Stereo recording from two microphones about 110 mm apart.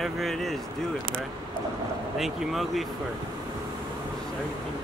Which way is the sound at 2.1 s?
Centre (ahead or behind).